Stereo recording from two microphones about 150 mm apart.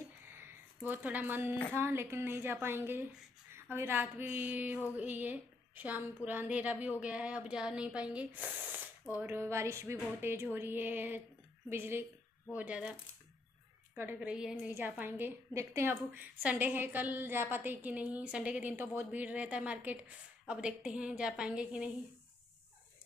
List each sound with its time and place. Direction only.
0.2 s a sound: 15° right (ahead or behind)
1.7 s a woman's voice: 15° right (ahead or behind)
13.9 s a woman's voice: 10° right (ahead or behind)